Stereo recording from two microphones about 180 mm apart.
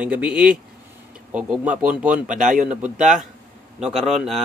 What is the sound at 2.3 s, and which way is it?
Speech, 45° right (ahead or behind).